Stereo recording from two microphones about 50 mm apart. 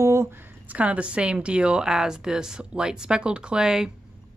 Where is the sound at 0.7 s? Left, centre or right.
Right.